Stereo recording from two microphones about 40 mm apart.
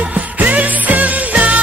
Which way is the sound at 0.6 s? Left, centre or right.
Right.